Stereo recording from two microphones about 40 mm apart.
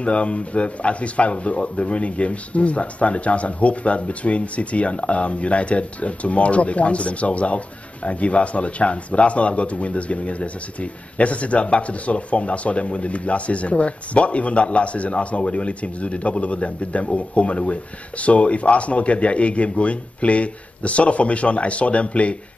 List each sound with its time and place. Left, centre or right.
0.0 s speech: left